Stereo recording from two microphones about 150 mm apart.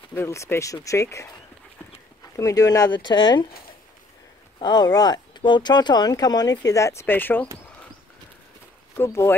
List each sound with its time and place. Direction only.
0.1 s speech: 20° left (ahead or behind)
2.3 s speech: 20° left (ahead or behind)
4.6 s speech: 30° left (ahead or behind); by 7.4 s 15° left (ahead or behind)
8.9 s speech: 15° left (ahead or behind)